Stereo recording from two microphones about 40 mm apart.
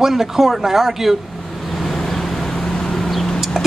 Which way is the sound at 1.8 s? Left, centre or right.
Centre.